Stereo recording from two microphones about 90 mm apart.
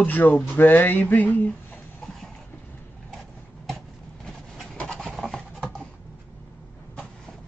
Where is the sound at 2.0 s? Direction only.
5° left (ahead or behind).